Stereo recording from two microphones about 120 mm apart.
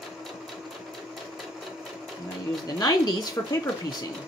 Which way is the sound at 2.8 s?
30° left (ahead or behind).